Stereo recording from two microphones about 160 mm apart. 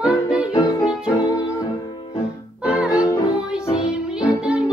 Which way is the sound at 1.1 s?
25° left (ahead or behind).